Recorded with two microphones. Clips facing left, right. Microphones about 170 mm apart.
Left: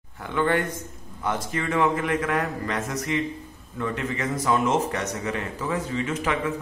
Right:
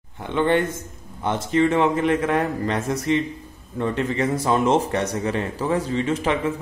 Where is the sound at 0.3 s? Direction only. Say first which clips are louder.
Right 4 dB; 25° right (ahead or behind).